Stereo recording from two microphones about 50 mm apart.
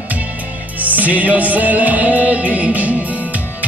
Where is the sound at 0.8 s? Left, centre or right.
Right.